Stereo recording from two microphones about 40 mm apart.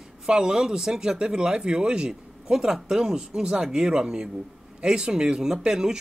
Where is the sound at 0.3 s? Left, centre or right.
Centre.